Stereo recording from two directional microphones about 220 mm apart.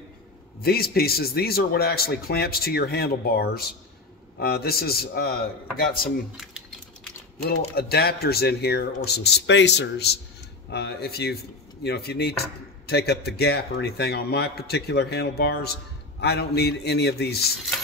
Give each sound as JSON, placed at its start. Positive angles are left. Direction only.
{"t": 0.6, "sound": "a man's voice", "side_deg": 45}
{"t": 6.3, "sound": "a sound", "side_deg": 0}
{"t": 7.4, "sound": "a man's voice", "side_deg": 45}